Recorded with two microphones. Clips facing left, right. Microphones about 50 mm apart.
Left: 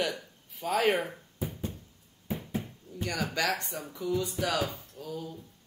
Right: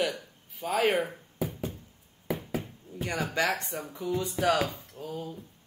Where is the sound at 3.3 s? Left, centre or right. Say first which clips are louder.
Right 4 dB; right.